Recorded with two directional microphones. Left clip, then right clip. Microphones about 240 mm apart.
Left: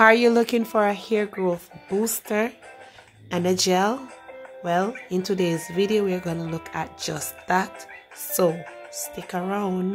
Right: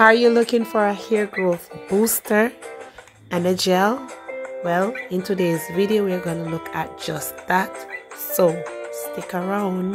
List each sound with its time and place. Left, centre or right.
0.0 s speech: centre
1.5 s speech: right
2.0 s speech: centre